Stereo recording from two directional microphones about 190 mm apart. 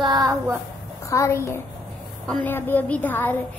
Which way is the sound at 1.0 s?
15° left (ahead or behind).